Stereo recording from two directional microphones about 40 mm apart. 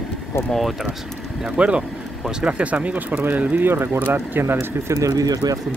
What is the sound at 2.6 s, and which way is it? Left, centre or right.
Speech, right.